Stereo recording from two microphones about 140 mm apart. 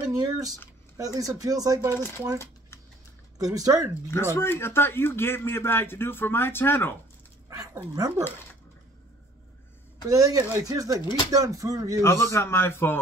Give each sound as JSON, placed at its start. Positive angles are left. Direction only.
{"t": 0.0, "sound": "a sound", "side_deg": -25}
{"t": 0.9, "sound": "speech", "side_deg": -25}
{"t": 2.0, "sound": "speech", "side_deg": 15}
{"t": 2.3, "sound": "a sound", "side_deg": 20}
{"t": 3.3, "sound": "speech", "side_deg": -25}
{"t": 4.1, "sound": "speech", "side_deg": 15}
{"t": 7.4, "sound": "speech", "side_deg": -25}
{"t": 10.0, "sound": "speech", "side_deg": -25}
{"t": 12.0, "sound": "speech", "side_deg": 20}